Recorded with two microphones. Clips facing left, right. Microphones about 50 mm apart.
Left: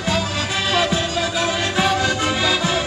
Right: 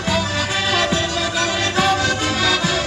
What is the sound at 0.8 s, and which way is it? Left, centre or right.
Music, centre.